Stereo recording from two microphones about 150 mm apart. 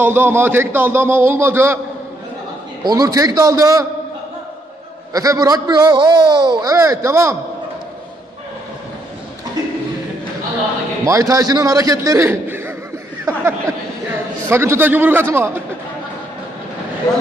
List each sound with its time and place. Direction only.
0.0 s a man's voice: 15° right (ahead or behind)
2.8 s a man's voice: 25° right (ahead or behind)
5.1 s a man's voice: 25° right (ahead or behind)
11.1 s a man's voice: 20° right (ahead or behind)
13.2 s a sound: 20° right (ahead or behind)